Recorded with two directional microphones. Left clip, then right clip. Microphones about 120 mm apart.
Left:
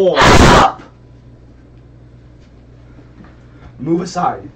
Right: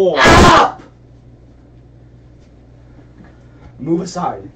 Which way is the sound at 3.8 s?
15° left (ahead or behind).